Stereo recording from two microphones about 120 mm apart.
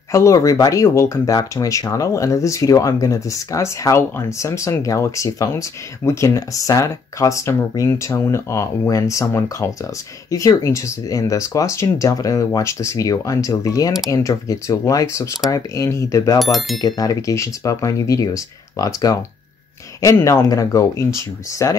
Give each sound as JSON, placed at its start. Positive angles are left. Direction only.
{"t": 0.1, "sound": "speech", "side_deg": 25}